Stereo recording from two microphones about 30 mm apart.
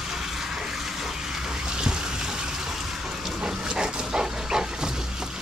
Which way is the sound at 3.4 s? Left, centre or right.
Right.